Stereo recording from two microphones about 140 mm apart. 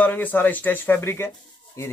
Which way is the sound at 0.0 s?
10° left (ahead or behind).